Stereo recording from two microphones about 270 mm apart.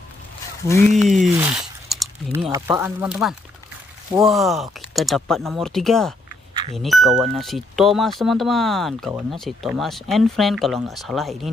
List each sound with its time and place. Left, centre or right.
0.7 s speech: centre